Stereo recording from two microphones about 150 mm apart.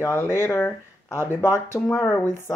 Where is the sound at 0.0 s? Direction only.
15° left (ahead or behind).